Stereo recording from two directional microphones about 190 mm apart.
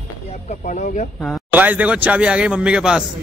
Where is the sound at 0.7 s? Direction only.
45° left (ahead or behind).